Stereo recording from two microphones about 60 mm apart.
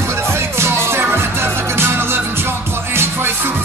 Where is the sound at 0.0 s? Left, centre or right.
Right.